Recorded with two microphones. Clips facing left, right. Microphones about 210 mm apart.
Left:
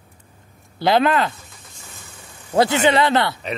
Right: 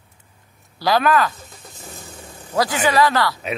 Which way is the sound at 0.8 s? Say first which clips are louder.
Left 1 dB; 25° left (ahead or behind).